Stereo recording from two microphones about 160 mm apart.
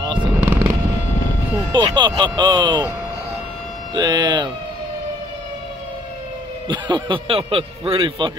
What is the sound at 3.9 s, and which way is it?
Speech, 25° right (ahead or behind).